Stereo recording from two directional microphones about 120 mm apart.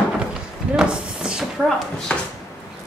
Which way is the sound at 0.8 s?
10° right (ahead or behind).